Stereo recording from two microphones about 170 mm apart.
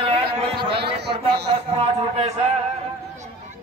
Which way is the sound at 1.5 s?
35° right (ahead or behind).